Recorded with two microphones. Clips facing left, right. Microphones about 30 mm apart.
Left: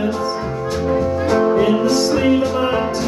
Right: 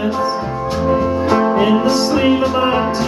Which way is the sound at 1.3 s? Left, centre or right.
Centre.